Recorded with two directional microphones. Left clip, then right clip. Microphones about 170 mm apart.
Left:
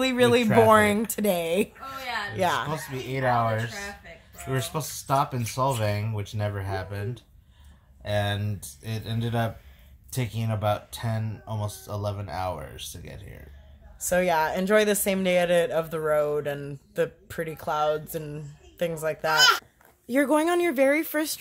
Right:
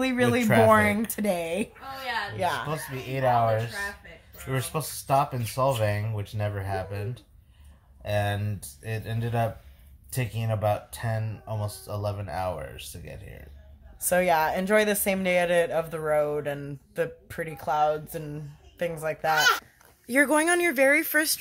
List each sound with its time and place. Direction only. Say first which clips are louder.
0.0 s speech: left 3 dB; 10° left (ahead or behind)
2.3 s a woman's voice: left 6 dB; 40° left (ahead or behind)
2.7 s speech: left 1 dB; 10° right (ahead or behind); by 21.4 s 15° left (ahead or behind)